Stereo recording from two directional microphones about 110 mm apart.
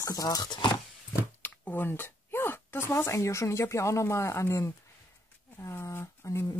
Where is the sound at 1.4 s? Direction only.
15° left (ahead or behind).